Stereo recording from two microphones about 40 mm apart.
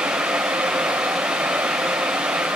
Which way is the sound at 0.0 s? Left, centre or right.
Right.